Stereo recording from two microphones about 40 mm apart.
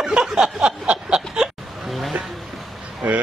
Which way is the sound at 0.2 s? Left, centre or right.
Centre.